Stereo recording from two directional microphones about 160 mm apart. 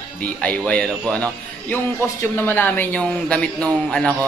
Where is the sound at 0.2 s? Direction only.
10° left (ahead or behind).